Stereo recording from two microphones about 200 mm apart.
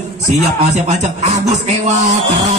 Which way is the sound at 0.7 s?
35° right (ahead or behind).